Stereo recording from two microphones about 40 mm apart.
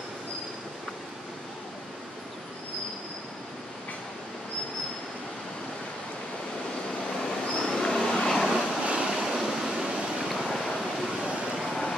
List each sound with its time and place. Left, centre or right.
7.2 s vehicle: centre
8.8 s waves: right
9.1 s waves: centre
9.8 s a sound: centre
10.2 s vehicle: centre
10.5 s a sound: centre